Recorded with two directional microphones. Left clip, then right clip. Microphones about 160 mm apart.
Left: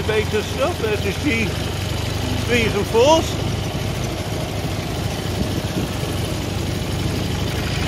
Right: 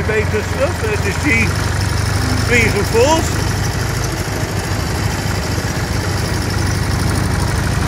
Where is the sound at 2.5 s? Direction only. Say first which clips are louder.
Right 5 dB; 25° left (ahead or behind).